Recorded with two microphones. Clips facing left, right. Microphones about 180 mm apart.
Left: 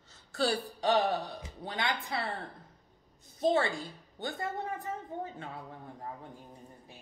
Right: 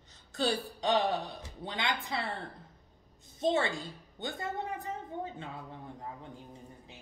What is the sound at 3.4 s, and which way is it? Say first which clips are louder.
Speech: left 1 dB; 25° right (ahead or behind).